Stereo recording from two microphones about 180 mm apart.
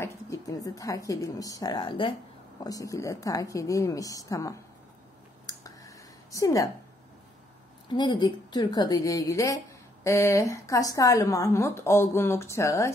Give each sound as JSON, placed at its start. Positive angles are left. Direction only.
{"t": 0.0, "sound": "a woman's voice", "side_deg": 20}
{"t": 5.6, "sound": "a sound", "side_deg": 20}
{"t": 7.9, "sound": "a woman's voice", "side_deg": 25}